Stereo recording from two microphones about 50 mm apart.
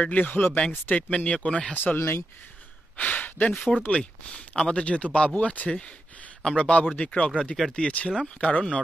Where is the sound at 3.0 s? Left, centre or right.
Left.